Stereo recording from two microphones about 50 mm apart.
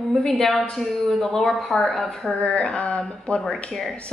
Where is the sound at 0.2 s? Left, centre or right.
Centre.